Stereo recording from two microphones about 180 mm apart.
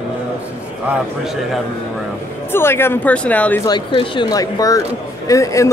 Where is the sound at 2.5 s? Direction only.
15° left (ahead or behind).